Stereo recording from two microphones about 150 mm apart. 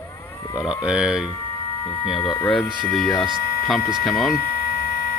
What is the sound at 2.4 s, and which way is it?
Speech, 5° left (ahead or behind).